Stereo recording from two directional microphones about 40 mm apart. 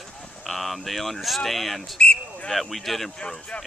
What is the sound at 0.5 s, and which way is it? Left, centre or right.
Speech, centre.